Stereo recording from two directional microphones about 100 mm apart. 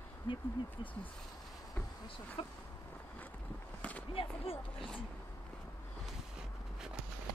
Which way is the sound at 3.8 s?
15° left (ahead or behind).